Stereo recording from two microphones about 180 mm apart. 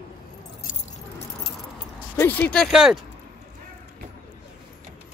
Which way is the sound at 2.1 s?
10° left (ahead or behind).